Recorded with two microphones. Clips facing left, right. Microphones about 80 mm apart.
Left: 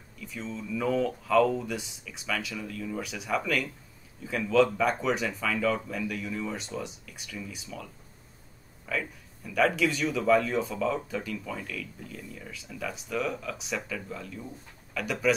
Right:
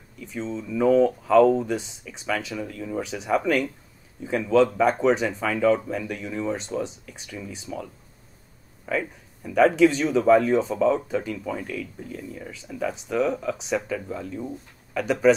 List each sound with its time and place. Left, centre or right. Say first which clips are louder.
0.2 s speech: right 6 dB; right